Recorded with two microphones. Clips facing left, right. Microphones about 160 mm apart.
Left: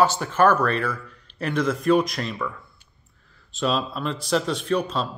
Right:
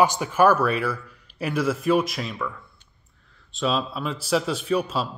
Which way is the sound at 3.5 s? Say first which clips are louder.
Left 1 dB; centre (ahead or behind).